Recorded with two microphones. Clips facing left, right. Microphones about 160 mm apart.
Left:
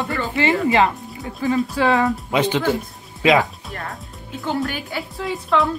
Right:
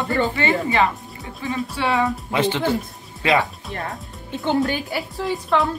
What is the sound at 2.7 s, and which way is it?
Music, 15° left (ahead or behind).